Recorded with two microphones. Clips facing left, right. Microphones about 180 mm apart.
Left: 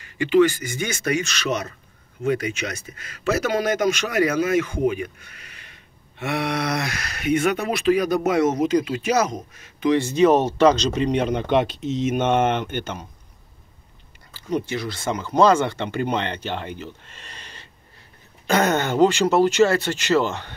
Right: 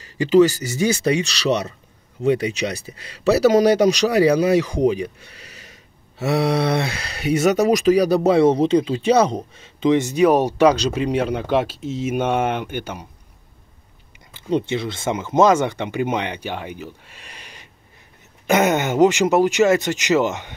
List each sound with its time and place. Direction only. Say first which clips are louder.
0.0 s speech: right 3 dB; 35° right (ahead or behind); by 13.0 s 10° right (ahead or behind)
14.3 s speech: right 4 dB; 25° right (ahead or behind)